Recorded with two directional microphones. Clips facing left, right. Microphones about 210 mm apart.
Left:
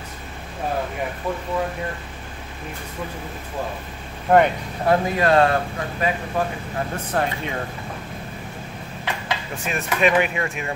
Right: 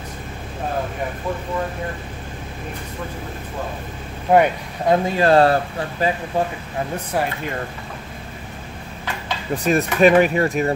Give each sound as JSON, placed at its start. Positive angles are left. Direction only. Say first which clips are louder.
{"t": 4.3, "sound": "speech", "louder": "right 1 dB", "side_deg": -10}
{"t": 5.1, "sound": "speech", "louder": "right 5 dB", "side_deg": -30}
{"t": 7.1, "sound": "speech", "louder": "left 1 dB", "side_deg": -5}
{"t": 9.6, "sound": "speech", "louder": "right 7 dB", "side_deg": -40}